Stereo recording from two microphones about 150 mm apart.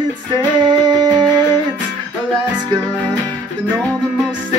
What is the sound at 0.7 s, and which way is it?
Music, 30° right (ahead or behind).